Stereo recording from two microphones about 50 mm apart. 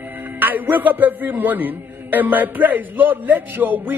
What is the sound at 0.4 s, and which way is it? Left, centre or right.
A man's voice, right.